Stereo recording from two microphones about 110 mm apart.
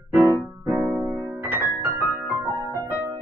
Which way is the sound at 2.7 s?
25° left (ahead or behind).